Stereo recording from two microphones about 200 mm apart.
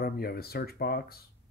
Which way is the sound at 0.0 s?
50° left (ahead or behind).